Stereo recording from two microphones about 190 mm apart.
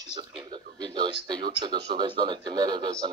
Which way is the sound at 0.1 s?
25° right (ahead or behind).